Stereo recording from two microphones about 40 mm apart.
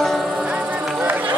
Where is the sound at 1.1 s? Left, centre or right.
Right.